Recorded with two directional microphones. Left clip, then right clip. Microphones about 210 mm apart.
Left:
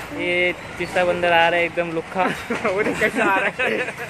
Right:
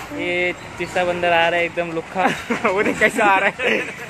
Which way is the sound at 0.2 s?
Centre (ahead or behind).